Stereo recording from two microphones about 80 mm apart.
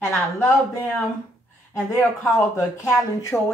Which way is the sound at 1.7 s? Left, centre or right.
Left.